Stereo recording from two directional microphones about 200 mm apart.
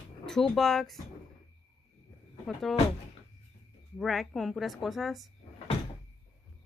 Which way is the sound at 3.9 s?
Centre (ahead or behind).